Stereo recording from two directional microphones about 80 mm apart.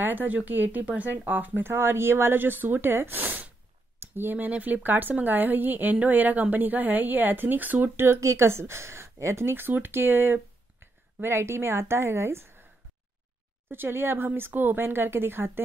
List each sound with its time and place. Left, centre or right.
0.0 s a woman's voice: right
13.7 s speech: right